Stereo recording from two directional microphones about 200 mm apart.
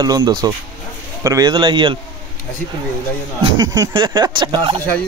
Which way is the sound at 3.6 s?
20° right (ahead or behind).